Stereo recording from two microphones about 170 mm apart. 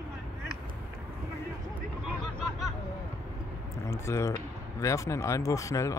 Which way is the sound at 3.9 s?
15° left (ahead or behind).